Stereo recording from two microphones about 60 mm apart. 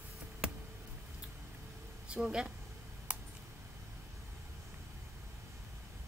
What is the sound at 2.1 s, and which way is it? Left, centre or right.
Speech, centre.